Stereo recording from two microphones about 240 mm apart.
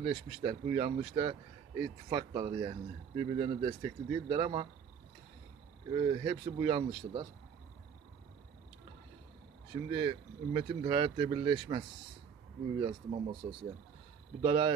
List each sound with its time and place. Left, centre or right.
0.0 s speech: right
5.9 s speech: right
9.8 s speech: right
12.8 s speech: right